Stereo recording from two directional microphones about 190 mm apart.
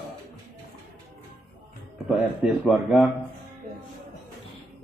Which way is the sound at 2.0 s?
Centre (ahead or behind).